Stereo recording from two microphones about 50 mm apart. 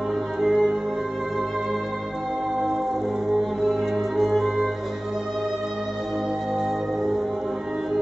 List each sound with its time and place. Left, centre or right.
0.4 s music: centre
4.2 s music: centre